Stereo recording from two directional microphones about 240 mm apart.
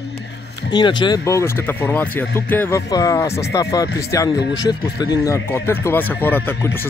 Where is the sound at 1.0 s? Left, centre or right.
Centre.